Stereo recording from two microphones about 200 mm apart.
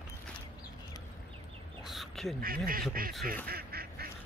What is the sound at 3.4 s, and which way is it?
Duck, 50° right (ahead or behind).